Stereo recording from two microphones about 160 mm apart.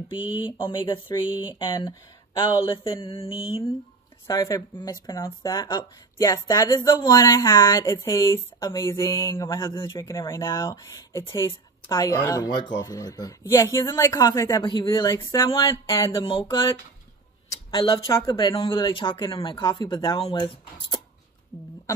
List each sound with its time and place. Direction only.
0.1 s speech: 30° left (ahead or behind)
4.3 s speech: 25° left (ahead or behind)
14.6 s speech: 30° left (ahead or behind)
15.3 s speech: 20° left (ahead or behind)
16.3 s speech: 35° left (ahead or behind)
17.6 s speech: 35° left (ahead or behind)